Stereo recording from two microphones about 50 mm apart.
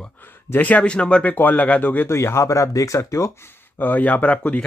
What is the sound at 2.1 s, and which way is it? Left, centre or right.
Speech, left.